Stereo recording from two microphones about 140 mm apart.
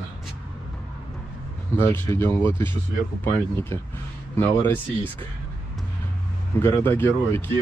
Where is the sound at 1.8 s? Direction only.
15° left (ahead or behind).